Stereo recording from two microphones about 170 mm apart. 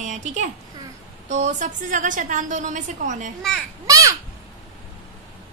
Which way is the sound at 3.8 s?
20° right (ahead or behind).